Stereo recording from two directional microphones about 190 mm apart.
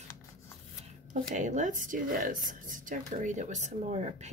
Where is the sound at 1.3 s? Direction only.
40° right (ahead or behind).